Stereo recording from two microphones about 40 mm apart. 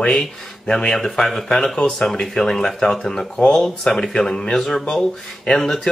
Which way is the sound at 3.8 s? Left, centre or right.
Centre.